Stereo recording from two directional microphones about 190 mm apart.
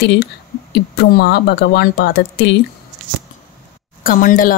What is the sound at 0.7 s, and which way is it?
A woman's voice, 60° left (ahead or behind).